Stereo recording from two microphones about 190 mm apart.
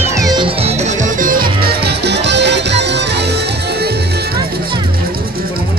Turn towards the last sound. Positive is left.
turn(degrees=-60)  # may be behind; listen again after turning